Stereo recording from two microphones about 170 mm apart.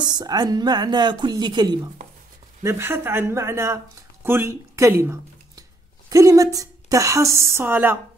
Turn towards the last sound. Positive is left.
turn(degrees=-10)  # may be behind; listen again after turning